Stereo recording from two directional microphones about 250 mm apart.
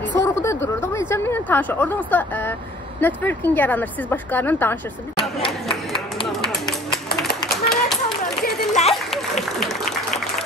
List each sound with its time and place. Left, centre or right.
0.1 s a woman's voice: centre
6.2 s music: centre
7.4 s clapping: centre
8.2 s a sound: left
9.6 s applause: centre